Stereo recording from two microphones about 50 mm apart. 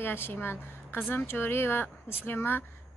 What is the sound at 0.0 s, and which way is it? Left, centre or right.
A woman's voice, left.